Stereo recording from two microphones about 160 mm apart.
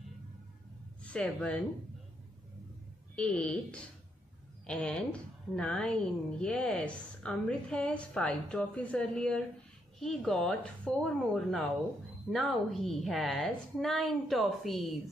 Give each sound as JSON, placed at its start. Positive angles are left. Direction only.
{"t": 1.0, "sound": "speech", "side_deg": 5}
{"t": 3.2, "sound": "a woman's voice", "side_deg": 5}